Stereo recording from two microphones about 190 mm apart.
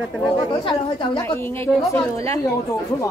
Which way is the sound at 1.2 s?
15° left (ahead or behind).